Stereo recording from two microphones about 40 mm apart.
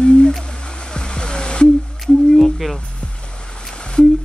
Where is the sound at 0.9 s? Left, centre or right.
Left.